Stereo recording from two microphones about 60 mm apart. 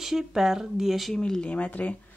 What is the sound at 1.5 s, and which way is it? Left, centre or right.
Speech, left.